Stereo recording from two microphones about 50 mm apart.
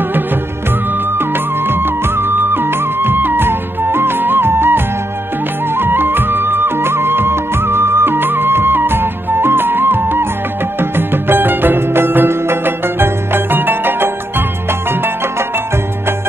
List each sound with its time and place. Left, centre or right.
1.1 s music: right